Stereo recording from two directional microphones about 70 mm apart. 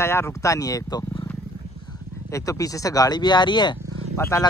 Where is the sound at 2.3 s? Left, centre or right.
Left.